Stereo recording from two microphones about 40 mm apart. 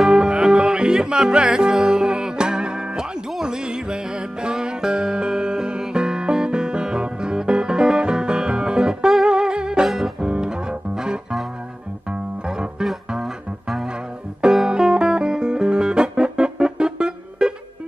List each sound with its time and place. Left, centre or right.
0.2 s music: centre
9.8 s music: centre
10.2 s music: right
13.2 s music: centre
14.7 s music: right